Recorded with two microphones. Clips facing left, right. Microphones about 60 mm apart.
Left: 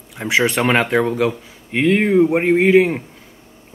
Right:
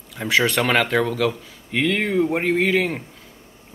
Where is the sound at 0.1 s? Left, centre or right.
Centre.